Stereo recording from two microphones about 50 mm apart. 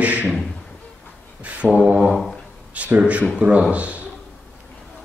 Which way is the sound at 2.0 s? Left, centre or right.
Centre.